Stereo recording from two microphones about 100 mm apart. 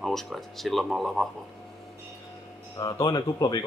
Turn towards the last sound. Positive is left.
turn(degrees=40)  # may be behind; listen again after turning